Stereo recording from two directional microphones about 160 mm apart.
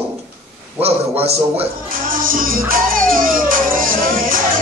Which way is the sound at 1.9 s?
60° right (ahead or behind).